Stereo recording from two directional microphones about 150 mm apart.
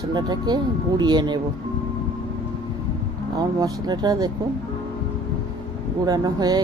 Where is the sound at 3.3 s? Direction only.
25° right (ahead or behind).